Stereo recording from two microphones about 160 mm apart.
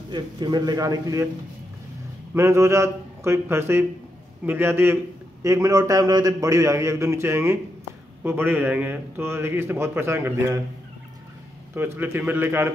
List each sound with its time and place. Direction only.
0.1 s a man's voice: 25° right (ahead or behind)
2.3 s a man's voice: 20° right (ahead or behind)
11.7 s a man's voice: 15° right (ahead or behind)